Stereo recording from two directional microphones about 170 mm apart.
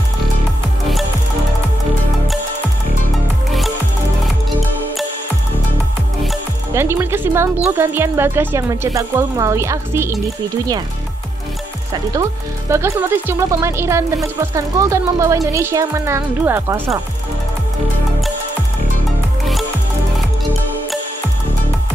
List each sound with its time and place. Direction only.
6.7 s speech: 15° right (ahead or behind)
11.9 s speech: 20° right (ahead or behind)